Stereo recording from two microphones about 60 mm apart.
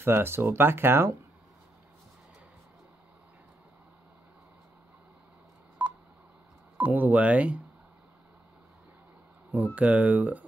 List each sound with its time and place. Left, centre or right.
0.0 s speech: right
5.8 s telephone dialing: right
6.8 s speech: right
9.8 s speech: right